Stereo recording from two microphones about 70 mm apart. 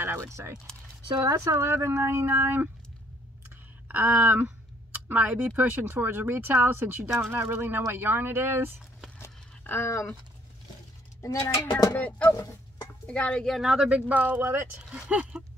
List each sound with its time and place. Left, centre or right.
0.0 s keys jangling: right
0.3 s speech: right
3.4 s a sound: right
4.9 s speech: right
9.2 s a sound: left
11.1 s speech: left
11.9 s speech: left
13.5 s speech: centre
13.8 s speech: centre
14.8 s speech: centre